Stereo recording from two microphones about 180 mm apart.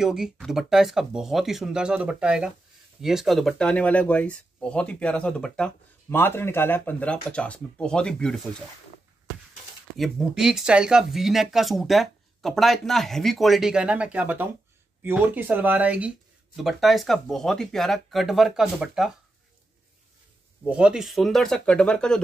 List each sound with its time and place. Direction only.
0.0 s speech: 5° right (ahead or behind)
9.9 s speech: centre (ahead or behind)
20.6 s speech: 5° right (ahead or behind)